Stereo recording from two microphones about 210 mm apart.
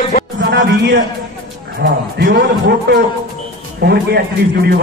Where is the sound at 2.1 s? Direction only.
50° right (ahead or behind).